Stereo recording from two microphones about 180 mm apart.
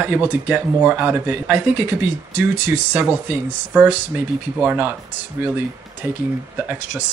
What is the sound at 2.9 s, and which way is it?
A man's voice, 10° right (ahead or behind).